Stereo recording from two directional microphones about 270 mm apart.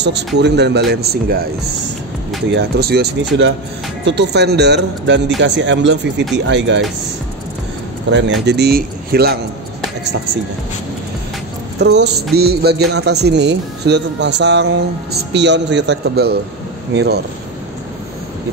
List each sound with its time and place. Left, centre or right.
0.4 s a man's voice: right
2.5 s a man's voice: right
8.1 s a man's voice: right
11.8 s a man's voice: right